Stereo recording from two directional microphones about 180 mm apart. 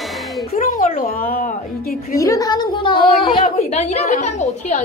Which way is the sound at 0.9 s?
55° left (ahead or behind).